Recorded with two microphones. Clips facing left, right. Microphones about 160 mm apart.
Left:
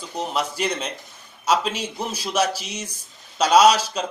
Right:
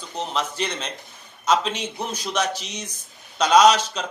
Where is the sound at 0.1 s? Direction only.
10° left (ahead or behind).